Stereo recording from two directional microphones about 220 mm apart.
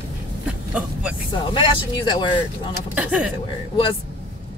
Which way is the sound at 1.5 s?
20° left (ahead or behind).